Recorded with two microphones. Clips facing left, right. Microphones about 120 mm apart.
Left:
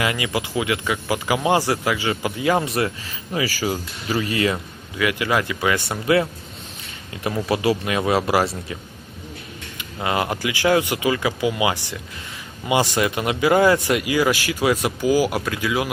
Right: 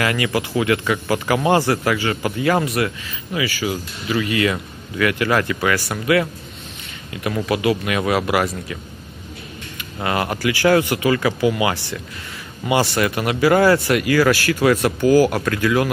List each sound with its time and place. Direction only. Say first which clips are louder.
0.0 s speech: right 3 dB; 15° left (ahead or behind)
2.6 s speech: right 2 dB; 30° left (ahead or behind)
3.3 s speech: even; 40° left (ahead or behind)
4.9 s speech: right 3 dB; 15° left (ahead or behind)
7.4 s speech: right 1 dB; 30° left (ahead or behind)
10.0 s speech: right 2 dB; 20° left (ahead or behind)